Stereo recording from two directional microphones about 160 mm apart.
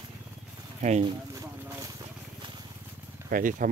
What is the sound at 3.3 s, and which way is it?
Speech, 55° right (ahead or behind).